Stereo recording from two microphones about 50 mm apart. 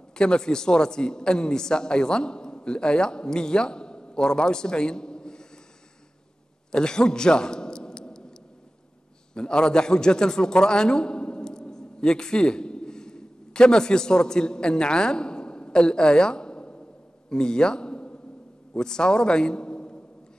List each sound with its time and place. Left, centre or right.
0.1 s a man's voice: centre
6.7 s a sound: centre
9.3 s a man's voice: centre